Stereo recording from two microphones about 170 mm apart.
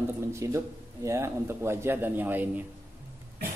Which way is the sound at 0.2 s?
15° right (ahead or behind).